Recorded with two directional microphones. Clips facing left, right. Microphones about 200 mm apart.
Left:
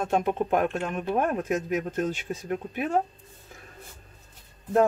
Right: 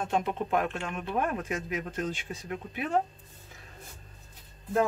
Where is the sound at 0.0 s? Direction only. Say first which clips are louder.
Left 4 dB; 45° left (ahead or behind).